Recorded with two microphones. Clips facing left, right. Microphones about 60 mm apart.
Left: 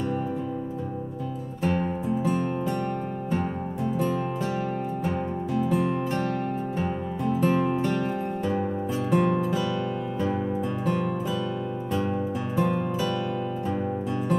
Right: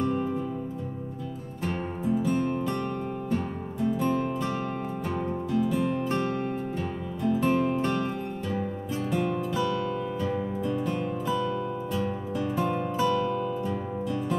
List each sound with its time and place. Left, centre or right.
6.8 s music: left
9.1 s music: left